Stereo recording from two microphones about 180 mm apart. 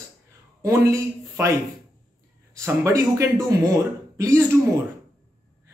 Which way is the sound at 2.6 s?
15° right (ahead or behind).